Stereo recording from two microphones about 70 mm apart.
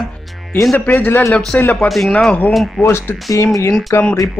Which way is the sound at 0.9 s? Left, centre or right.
Left.